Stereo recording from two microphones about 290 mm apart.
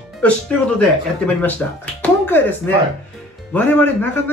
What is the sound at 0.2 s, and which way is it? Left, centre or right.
Speech, centre.